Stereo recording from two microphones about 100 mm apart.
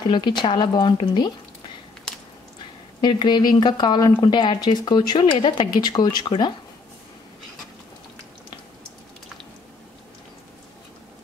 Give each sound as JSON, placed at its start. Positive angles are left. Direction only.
{"t": 0.0, "sound": "speech", "side_deg": 50}
{"t": 3.0, "sound": "speech", "side_deg": 50}